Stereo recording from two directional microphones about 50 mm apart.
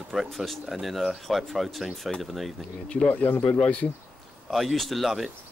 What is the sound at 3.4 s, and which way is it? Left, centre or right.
Speech, left.